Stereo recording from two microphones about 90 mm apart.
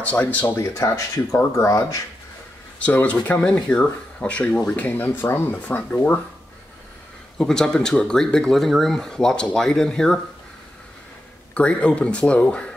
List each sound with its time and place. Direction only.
0.0 s speech: 15° left (ahead or behind)
0.6 s speech: 30° left (ahead or behind)
2.8 s speech: 15° left (ahead or behind)
7.3 s speech: 5° left (ahead or behind)
11.5 s speech: 10° left (ahead or behind)